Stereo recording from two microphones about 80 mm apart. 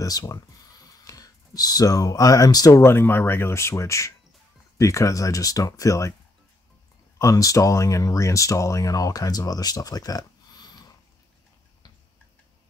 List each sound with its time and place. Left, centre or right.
0.0 s speech: left
2.8 s speech: left
7.2 s speech: left